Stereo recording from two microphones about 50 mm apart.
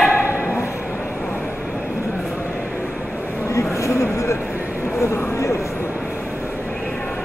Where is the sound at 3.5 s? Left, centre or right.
Left.